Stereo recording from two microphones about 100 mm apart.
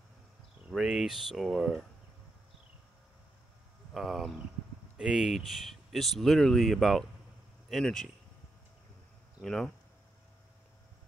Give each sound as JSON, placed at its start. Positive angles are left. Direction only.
{"t": 0.7, "sound": "speech", "side_deg": -5}
{"t": 3.9, "sound": "speech", "side_deg": 0}
{"t": 9.4, "sound": "speech", "side_deg": 5}